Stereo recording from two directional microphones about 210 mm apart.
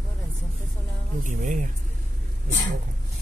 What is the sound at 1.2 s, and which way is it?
Speech, 35° right (ahead or behind).